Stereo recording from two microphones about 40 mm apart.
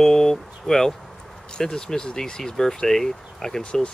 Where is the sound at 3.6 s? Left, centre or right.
Left.